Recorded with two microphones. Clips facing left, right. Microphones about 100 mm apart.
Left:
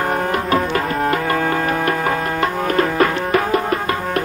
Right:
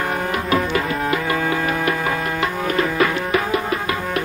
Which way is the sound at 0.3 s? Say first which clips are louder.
Left 2 dB; 40° left (ahead or behind).